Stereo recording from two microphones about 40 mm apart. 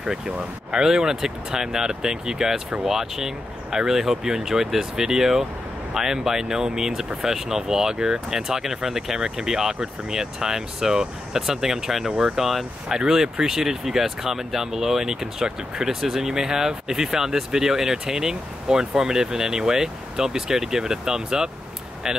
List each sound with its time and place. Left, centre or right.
0.7 s speech: centre
12.8 s speech: centre